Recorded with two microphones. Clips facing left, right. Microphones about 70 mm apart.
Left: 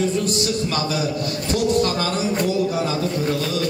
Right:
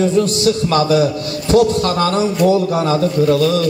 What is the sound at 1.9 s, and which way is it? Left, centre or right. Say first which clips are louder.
A man's voice: right 6 dB; right.